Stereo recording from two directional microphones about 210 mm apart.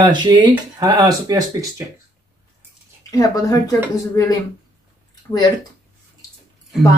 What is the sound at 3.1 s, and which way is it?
Speech, 15° left (ahead or behind).